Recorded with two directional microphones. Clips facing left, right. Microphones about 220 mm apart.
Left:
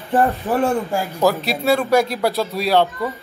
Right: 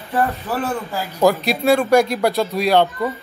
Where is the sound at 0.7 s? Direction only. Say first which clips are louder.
Left 4 dB; 25° left (ahead or behind).